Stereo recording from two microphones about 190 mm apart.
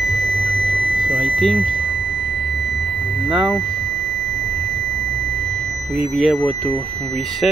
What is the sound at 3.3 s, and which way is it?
Speech, 5° right (ahead or behind).